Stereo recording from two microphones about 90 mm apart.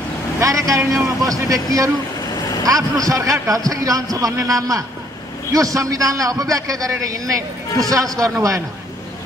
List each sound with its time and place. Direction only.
0.4 s a man's voice: 40° right (ahead or behind)
2.3 s vehicle: 40° left (ahead or behind)
2.6 s a man's voice: 40° right (ahead or behind)